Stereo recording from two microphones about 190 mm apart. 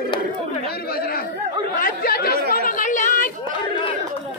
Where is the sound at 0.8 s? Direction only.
50° left (ahead or behind).